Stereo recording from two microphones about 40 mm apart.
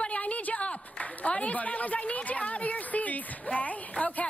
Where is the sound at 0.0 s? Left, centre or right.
Left.